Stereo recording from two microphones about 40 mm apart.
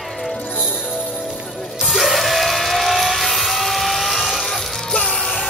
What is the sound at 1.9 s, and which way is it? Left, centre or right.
Music, centre.